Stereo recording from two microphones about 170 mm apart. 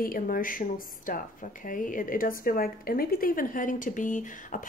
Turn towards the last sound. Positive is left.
turn(degrees=50)  # may be behind; listen again after turning